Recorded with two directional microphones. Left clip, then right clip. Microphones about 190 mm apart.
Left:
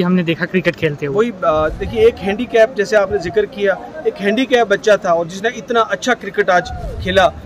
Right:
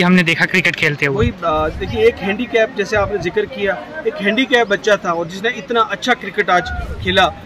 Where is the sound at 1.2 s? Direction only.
20° left (ahead or behind).